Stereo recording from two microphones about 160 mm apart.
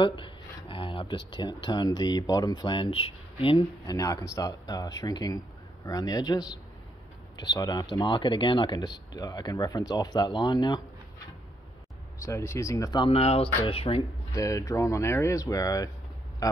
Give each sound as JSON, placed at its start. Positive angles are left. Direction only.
{"t": 0.0, "sound": "speech", "side_deg": 30}
{"t": 12.2, "sound": "speech", "side_deg": 20}
{"t": 14.3, "sound": "speech", "side_deg": 20}